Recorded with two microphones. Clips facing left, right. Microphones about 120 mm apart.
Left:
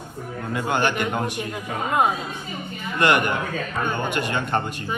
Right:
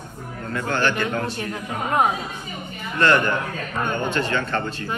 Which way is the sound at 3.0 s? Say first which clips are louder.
Right 1 dB; 15° left (ahead or behind).